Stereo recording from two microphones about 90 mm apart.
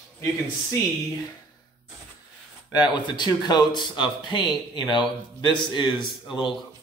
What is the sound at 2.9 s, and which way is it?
A man's voice, 55° left (ahead or behind).